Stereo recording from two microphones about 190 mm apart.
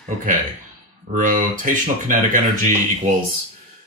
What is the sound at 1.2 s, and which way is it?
Speech, 45° right (ahead or behind).